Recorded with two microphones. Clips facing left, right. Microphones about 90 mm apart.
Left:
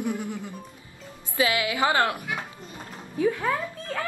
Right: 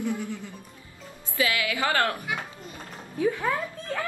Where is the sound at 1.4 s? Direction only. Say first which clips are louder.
Left 3 dB; 25° left (ahead or behind).